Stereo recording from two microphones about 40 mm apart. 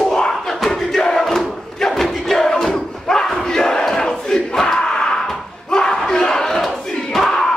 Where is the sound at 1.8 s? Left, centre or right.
Centre.